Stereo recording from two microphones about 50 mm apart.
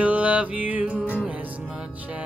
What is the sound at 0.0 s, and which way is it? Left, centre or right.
Music, right.